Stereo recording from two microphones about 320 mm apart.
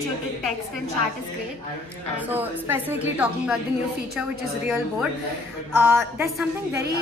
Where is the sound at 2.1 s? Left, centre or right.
Centre.